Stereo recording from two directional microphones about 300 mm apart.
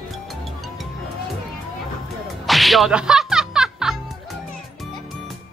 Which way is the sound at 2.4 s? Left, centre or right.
Centre.